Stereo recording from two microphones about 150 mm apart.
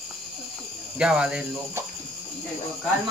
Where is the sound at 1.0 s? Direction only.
5° right (ahead or behind).